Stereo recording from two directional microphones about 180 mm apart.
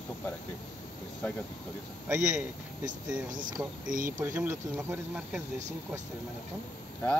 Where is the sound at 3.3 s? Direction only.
45° right (ahead or behind).